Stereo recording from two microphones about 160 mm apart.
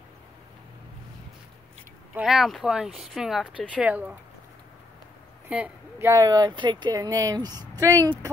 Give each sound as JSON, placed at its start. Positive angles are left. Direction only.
{"t": 2.1, "sound": "speech", "side_deg": 0}
{"t": 5.5, "sound": "speech", "side_deg": -10}